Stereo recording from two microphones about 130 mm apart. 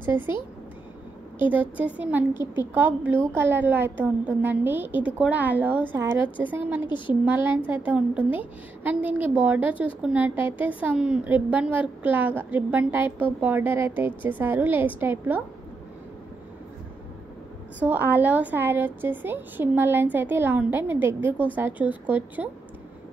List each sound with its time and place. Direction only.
0.0 s a woman's voice: 15° right (ahead or behind)
1.5 s a woman's voice: 10° right (ahead or behind)
17.7 s a woman's voice: 15° right (ahead or behind)